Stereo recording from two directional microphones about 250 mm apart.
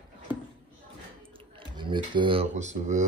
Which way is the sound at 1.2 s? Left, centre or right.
Right.